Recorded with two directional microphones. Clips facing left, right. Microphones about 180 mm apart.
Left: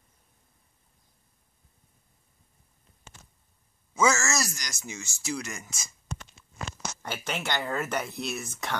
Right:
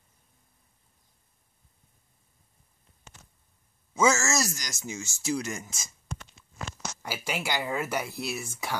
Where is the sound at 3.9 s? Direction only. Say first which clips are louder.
Right 1 dB; 25° right (ahead or behind).